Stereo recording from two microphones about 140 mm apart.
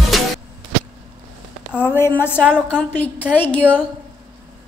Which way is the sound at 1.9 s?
15° left (ahead or behind).